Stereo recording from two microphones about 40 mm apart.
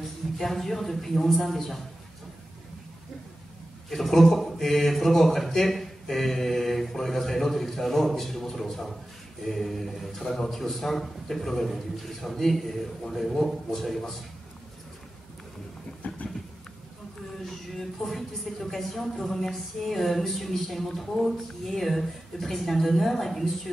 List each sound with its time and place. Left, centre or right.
0.0 s a man's voice: centre
3.9 s speech: centre
16.0 s a sound: left
17.5 s speech: centre